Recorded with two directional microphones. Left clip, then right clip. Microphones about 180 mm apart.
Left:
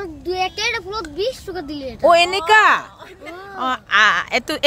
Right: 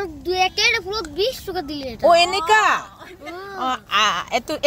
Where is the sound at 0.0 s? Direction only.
Centre (ahead or behind).